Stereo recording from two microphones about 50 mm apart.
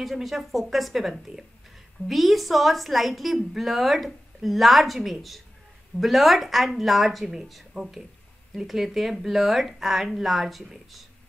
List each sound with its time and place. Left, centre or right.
0.0 s a woman's voice: centre